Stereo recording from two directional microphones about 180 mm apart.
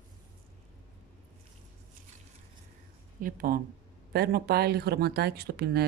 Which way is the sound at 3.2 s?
50° right (ahead or behind).